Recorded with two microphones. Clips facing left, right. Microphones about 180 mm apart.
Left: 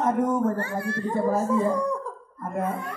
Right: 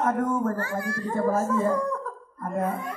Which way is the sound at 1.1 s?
15° left (ahead or behind).